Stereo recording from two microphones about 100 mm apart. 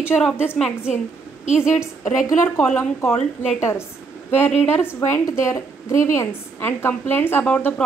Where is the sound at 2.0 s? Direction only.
30° left (ahead or behind).